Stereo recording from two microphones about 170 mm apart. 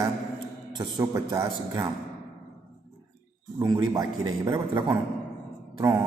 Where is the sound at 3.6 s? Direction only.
25° right (ahead or behind).